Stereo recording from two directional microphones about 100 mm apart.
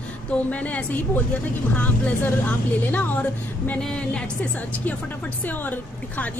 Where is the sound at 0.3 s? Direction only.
15° left (ahead or behind).